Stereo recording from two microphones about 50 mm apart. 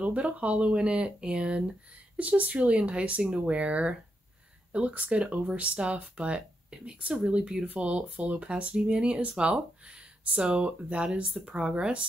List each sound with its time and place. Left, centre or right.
0.0 s speech: right